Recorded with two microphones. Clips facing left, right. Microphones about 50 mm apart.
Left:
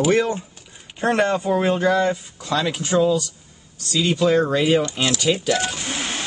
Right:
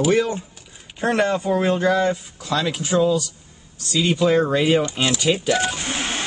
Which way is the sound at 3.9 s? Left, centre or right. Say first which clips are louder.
Even; centre.